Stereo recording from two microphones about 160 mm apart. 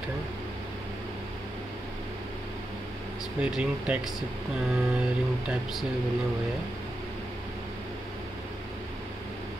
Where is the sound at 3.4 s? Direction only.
5° right (ahead or behind).